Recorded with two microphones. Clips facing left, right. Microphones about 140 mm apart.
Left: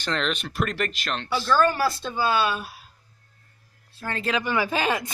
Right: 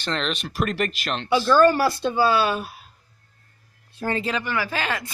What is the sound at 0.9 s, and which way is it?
Speech, 15° right (ahead or behind).